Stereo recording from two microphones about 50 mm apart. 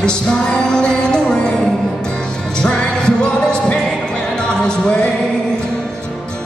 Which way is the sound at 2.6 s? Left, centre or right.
Centre.